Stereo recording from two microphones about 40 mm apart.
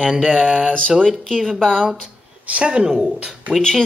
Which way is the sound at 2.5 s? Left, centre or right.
Right.